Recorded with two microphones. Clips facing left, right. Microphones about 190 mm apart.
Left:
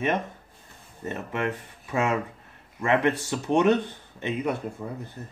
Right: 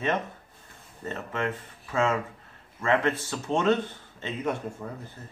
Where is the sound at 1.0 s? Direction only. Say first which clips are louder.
Left 2 dB; 15° left (ahead or behind).